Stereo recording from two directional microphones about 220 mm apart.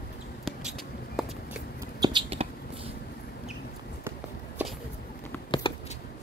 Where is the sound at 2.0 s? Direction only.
25° right (ahead or behind).